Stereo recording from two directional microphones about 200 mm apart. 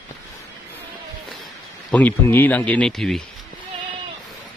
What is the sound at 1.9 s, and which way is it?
Speech, 10° left (ahead or behind).